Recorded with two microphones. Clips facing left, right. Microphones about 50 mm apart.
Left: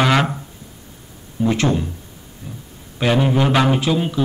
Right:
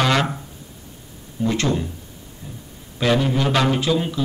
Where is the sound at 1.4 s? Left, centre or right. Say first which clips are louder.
Left 3 dB; centre.